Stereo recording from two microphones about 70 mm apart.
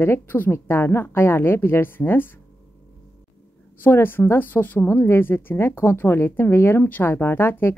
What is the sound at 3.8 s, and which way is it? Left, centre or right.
A woman's voice, left.